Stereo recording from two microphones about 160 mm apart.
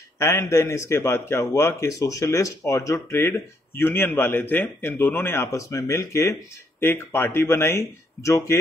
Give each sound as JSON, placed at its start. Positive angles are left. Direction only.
{"t": 0.2, "sound": "a man's voice", "side_deg": 15}